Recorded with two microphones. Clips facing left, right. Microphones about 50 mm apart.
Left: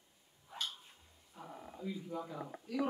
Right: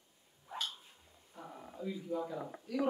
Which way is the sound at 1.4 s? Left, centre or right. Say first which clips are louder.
Right 2 dB; centre.